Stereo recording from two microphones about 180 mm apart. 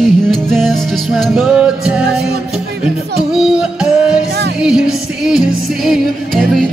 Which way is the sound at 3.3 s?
5° right (ahead or behind).